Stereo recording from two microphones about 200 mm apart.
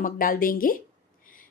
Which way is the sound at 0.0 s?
45° left (ahead or behind).